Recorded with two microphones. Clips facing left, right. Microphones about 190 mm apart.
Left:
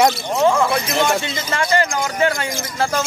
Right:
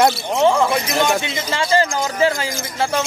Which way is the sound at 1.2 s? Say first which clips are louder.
Even; 20° right (ahead or behind).